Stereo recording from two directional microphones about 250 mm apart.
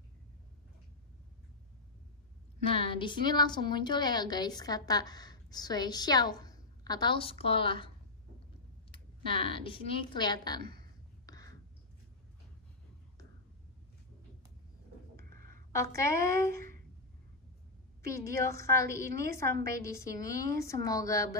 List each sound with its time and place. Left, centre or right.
2.6 s a woman's voice: left
8.9 s a woman's voice: left
10.6 s speech: right
11.2 s a sound: centre
15.1 s a sound: right
15.7 s a woman's voice: centre
18.0 s a woman's voice: centre